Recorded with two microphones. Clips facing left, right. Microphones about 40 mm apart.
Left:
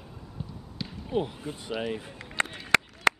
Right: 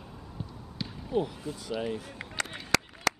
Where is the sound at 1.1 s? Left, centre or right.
Left.